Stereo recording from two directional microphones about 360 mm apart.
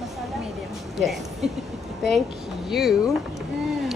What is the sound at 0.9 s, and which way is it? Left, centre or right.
Speech, centre.